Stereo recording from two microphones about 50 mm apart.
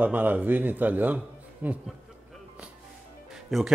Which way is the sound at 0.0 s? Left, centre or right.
Right.